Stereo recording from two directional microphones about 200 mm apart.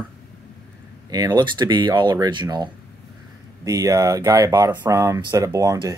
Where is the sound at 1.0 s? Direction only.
20° right (ahead or behind).